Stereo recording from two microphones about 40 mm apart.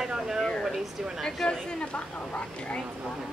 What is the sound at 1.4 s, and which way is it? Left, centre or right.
A woman's voice, left.